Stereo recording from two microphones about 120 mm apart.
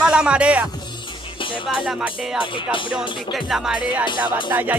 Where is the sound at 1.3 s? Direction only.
45° left (ahead or behind).